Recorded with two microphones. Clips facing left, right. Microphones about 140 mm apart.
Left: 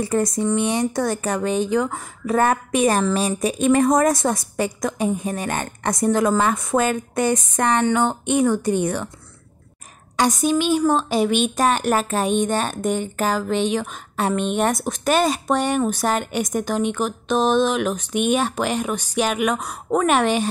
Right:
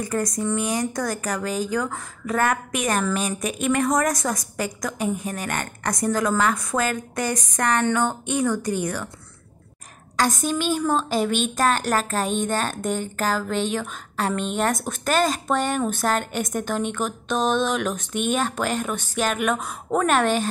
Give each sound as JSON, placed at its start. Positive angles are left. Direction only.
{"t": 0.0, "sound": "speech", "side_deg": 25}
{"t": 10.1, "sound": "speech", "side_deg": 15}